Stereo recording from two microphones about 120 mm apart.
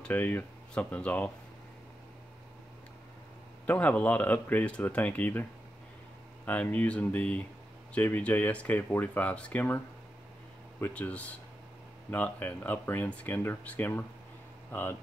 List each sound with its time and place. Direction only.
0.0 s speech: 15° left (ahead or behind)
3.6 s speech: 15° left (ahead or behind)
10.8 s speech: 10° left (ahead or behind)